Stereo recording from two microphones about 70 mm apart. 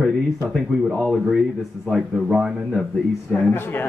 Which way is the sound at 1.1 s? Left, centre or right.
Centre.